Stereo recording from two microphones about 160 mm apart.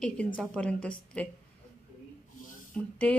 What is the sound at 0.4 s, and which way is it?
Speech, 5° left (ahead or behind).